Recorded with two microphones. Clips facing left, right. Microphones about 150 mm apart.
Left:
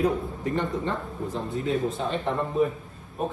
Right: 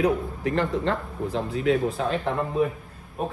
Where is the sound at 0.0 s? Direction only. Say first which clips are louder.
Right 2 dB; 90° right.